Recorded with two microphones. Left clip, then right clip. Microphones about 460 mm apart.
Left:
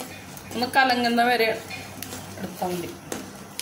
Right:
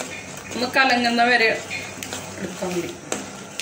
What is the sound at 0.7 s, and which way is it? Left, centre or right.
Speech, left.